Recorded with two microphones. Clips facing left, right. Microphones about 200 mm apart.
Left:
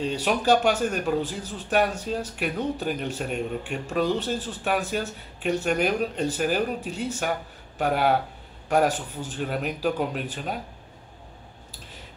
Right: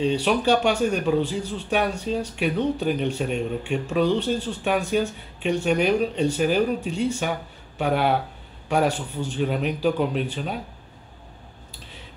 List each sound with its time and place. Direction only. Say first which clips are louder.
0.2 s speech: right 1 dB; 5° left (ahead or behind)